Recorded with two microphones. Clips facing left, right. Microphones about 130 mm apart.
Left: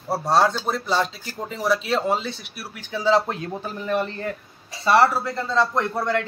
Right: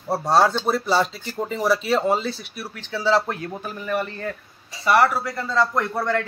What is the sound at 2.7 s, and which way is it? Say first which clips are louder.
Speech: left 1 dB; 15° left (ahead or behind).